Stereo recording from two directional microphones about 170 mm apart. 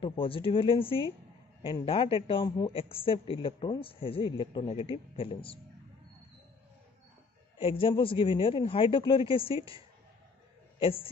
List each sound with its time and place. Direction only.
0.0 s speech: 30° left (ahead or behind)
7.5 s speech: 30° left (ahead or behind)
10.8 s a man's voice: 35° left (ahead or behind)